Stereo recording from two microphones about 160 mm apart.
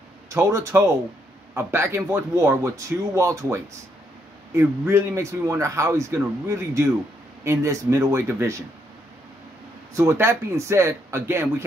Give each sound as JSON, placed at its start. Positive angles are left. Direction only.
{"t": 0.3, "sound": "a man's voice", "side_deg": -15}
{"t": 9.9, "sound": "a man's voice", "side_deg": -15}